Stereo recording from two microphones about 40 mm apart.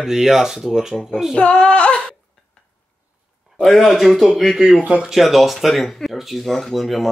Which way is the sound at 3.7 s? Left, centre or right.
Centre.